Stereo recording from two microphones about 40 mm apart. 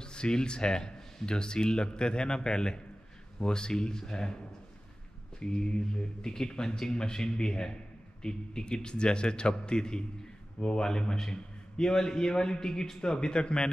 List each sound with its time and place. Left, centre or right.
0.0 s speech: left
5.4 s a man's voice: centre